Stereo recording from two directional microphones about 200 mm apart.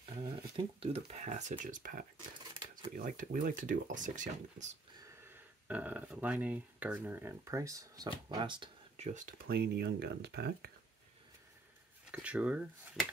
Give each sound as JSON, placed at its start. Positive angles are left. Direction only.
{"t": 0.2, "sound": "speech", "side_deg": -25}
{"t": 5.2, "sound": "speech", "side_deg": -10}
{"t": 12.1, "sound": "speech", "side_deg": -5}